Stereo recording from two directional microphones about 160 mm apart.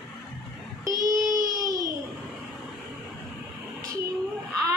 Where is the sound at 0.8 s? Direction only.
20° right (ahead or behind).